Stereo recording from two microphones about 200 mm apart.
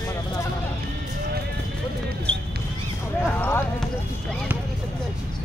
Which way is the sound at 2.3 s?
5° left (ahead or behind).